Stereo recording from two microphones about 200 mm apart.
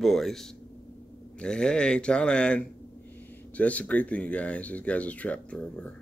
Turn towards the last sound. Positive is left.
turn(degrees=5)  # may be behind; listen again after turning